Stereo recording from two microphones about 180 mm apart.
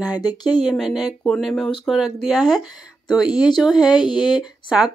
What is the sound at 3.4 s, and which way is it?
Speech, 25° left (ahead or behind).